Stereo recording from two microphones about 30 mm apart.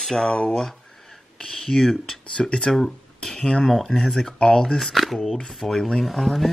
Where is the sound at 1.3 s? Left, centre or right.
Left.